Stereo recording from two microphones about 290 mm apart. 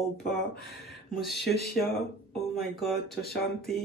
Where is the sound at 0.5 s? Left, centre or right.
Left.